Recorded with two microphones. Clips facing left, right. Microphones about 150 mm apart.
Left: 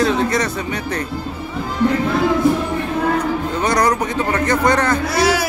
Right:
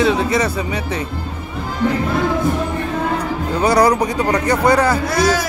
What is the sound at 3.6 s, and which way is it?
A man's voice, 10° right (ahead or behind).